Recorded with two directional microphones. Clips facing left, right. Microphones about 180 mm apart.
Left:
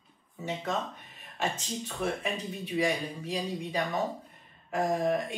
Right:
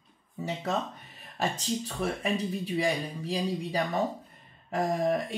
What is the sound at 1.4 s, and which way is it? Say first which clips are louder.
Speech: right 3 dB; 35° right (ahead or behind).